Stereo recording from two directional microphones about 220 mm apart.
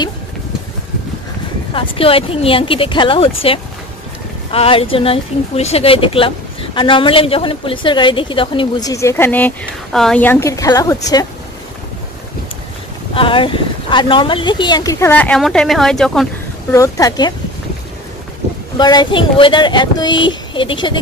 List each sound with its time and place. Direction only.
1.7 s speech: 25° left (ahead or behind)
13.1 s speech: 25° left (ahead or behind); by 16.3 s centre (ahead or behind)
16.7 s speech: 15° left (ahead or behind)
18.8 s speech: 20° left (ahead or behind)